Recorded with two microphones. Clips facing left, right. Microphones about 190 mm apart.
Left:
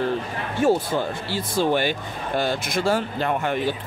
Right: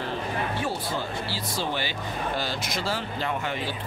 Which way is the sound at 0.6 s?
45° left (ahead or behind).